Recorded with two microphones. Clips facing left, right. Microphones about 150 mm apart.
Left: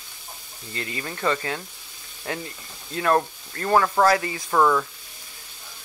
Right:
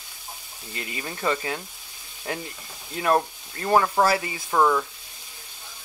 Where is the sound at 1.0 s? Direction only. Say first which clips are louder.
Left 1 dB; 15° right (ahead or behind).